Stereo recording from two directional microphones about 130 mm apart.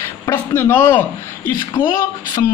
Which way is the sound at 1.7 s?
35° left (ahead or behind).